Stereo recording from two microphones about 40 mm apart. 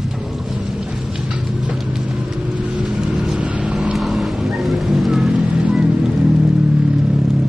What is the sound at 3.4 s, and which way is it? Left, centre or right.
Vehicle, right.